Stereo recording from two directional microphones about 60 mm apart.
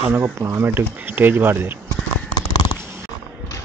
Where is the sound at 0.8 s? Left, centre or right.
Right.